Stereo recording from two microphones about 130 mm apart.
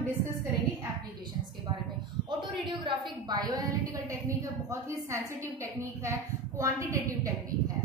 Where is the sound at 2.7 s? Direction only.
35° right (ahead or behind).